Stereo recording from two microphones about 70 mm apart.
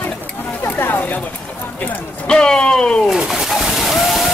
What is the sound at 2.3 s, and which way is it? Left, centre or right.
Speech, centre.